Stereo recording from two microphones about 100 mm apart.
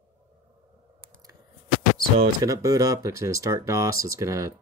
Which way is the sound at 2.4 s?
35° right (ahead or behind).